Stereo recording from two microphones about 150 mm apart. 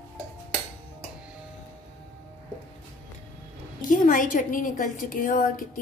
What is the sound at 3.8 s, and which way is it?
A woman's voice, 60° left (ahead or behind).